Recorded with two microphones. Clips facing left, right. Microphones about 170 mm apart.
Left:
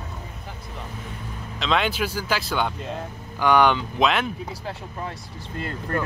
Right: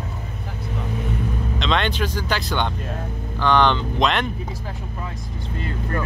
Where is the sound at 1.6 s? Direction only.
5° left (ahead or behind).